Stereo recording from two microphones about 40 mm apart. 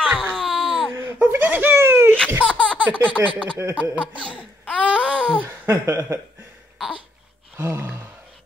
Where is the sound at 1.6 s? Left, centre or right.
Right.